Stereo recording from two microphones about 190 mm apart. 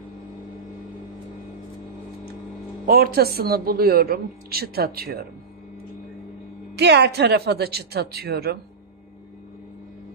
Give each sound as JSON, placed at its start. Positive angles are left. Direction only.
{"t": 2.9, "sound": "speech", "side_deg": -55}
{"t": 6.7, "sound": "speech", "side_deg": -60}